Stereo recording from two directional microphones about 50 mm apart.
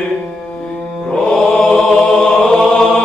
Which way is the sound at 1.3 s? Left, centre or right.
Centre.